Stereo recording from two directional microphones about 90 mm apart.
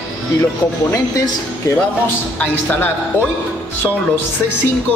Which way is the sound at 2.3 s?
20° left (ahead or behind).